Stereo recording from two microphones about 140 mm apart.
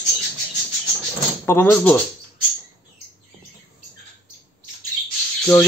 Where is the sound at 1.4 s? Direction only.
15° left (ahead or behind).